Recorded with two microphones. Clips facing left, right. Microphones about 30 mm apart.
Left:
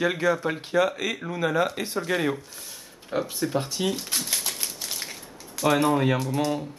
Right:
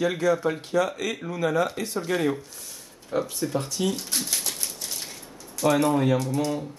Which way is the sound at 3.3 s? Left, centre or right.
Left.